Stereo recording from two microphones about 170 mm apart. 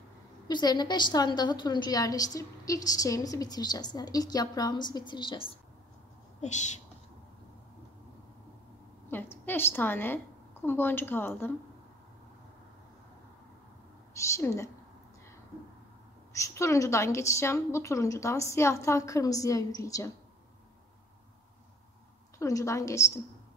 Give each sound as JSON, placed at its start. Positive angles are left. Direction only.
{"t": 0.5, "sound": "a woman's voice", "side_deg": 25}
{"t": 6.4, "sound": "speech", "side_deg": 45}
{"t": 9.1, "sound": "a woman's voice", "side_deg": 10}
{"t": 14.2, "sound": "a woman's voice", "side_deg": 15}
{"t": 16.3, "sound": "a woman's voice", "side_deg": 15}
{"t": 22.4, "sound": "a woman's voice", "side_deg": 20}